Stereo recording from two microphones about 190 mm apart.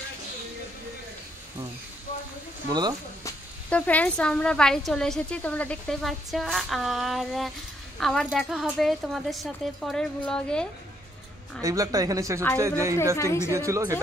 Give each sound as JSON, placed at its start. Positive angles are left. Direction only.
{"t": 3.3, "sound": "speech", "side_deg": 10}
{"t": 11.6, "sound": "speech", "side_deg": -20}
{"t": 13.1, "sound": "a woman's voice", "side_deg": 15}
{"t": 13.5, "sound": "speech", "side_deg": -15}